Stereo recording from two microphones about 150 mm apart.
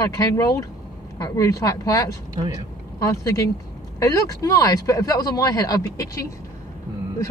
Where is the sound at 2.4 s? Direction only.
30° right (ahead or behind).